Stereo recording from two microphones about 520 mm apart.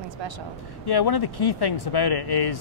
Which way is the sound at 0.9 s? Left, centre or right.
Left.